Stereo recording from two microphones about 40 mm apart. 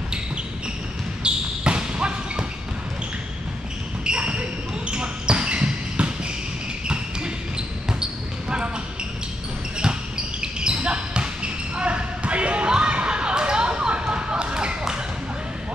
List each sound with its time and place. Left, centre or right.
1.2 s basketball bounce: right
4.0 s basketball bounce: right
7.5 s basketball bounce: right
10.4 s basketball bounce: right